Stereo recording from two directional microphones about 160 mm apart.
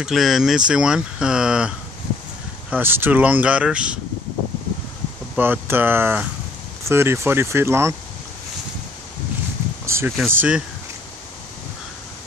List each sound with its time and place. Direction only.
0.0 s speech: centre (ahead or behind)
2.7 s speech: 15° right (ahead or behind)
5.3 s speech: 10° right (ahead or behind)
9.8 s a sound: 15° right (ahead or behind)
10.2 s speech: 10° right (ahead or behind)